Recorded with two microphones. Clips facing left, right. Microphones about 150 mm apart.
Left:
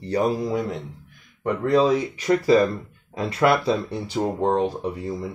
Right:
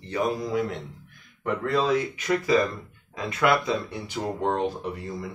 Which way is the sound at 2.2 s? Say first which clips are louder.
Left 7 dB; 35° left (ahead or behind).